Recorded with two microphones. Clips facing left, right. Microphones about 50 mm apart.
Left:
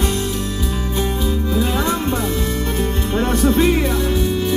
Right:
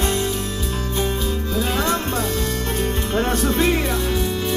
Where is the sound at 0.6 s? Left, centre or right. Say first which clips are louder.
Left 2 dB; centre.